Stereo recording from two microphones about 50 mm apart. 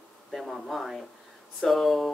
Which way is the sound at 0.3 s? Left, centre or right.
Centre.